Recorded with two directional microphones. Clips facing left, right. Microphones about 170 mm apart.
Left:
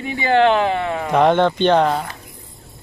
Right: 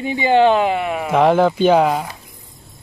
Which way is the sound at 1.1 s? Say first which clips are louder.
Right 1 dB; 5° right (ahead or behind).